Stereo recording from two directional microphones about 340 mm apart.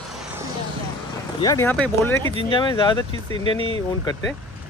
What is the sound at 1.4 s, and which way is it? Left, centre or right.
Speech, centre.